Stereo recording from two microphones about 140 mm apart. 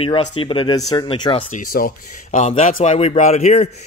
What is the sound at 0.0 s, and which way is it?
Speech, 40° left (ahead or behind).